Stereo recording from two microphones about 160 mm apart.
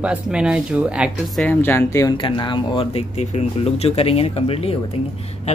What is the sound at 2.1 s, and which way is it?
Speech, 30° left (ahead or behind).